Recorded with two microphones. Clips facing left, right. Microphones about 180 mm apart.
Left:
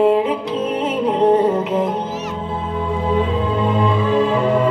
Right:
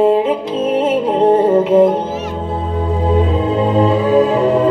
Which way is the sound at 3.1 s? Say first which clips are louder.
Right 4 dB; 45° right (ahead or behind).